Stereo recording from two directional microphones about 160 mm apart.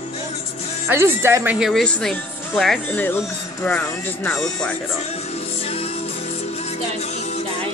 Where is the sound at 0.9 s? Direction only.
15° right (ahead or behind).